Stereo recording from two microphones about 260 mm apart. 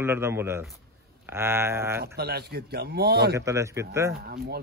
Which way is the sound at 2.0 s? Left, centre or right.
Right.